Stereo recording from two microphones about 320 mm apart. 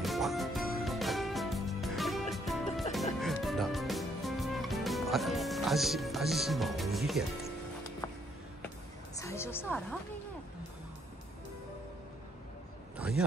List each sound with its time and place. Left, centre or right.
0.0 s music: centre
8.6 s music: centre
12.9 s a sound: centre